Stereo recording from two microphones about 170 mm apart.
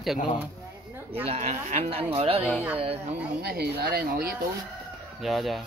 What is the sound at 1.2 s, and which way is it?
Speech, 40° right (ahead or behind).